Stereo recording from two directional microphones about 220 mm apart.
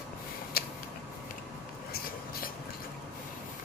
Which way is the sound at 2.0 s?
45° left (ahead or behind).